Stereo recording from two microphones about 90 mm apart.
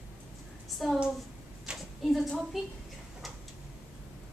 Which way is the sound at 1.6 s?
5° right (ahead or behind).